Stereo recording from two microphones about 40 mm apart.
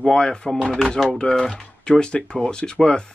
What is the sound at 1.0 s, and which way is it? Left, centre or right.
Speech, left.